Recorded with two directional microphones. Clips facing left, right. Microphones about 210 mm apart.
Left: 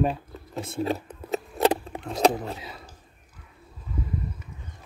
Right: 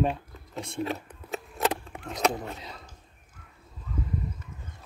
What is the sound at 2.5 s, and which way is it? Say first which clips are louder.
Speech: left 2 dB; 5° left (ahead or behind).